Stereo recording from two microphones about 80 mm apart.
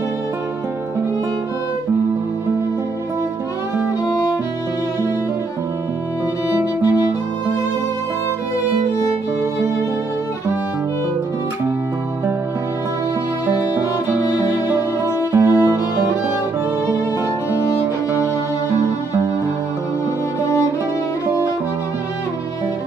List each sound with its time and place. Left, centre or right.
6.5 s music: right
13.5 s music: right